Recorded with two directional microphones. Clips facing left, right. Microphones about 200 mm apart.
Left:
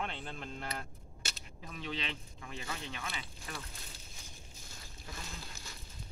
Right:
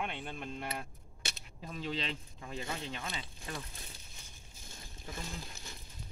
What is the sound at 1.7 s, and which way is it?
Speech, 35° right (ahead or behind).